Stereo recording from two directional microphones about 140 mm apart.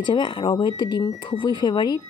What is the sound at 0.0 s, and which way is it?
Speech, 35° left (ahead or behind).